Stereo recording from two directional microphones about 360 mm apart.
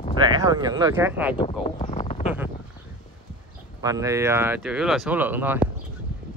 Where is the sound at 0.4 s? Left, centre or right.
Centre.